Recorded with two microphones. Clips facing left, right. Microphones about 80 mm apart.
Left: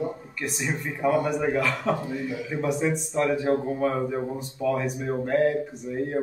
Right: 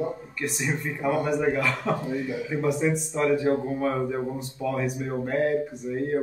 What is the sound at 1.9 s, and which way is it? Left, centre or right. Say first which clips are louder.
Speech: even; centre.